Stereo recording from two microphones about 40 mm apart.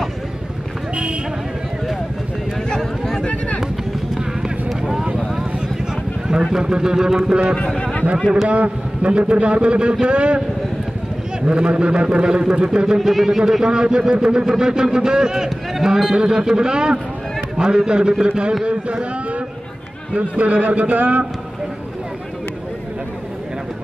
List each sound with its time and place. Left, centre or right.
2.8 s a sound: centre
3.3 s vehicle: left
4.4 s run: centre
6.2 s speech: centre
8.5 s a man's voice: right
11.4 s a man's voice: right
13.0 s a man's voice: centre
15.7 s a sound: centre
16.2 s a man's voice: centre
18.6 s a sound: right
20.2 s a man's voice: right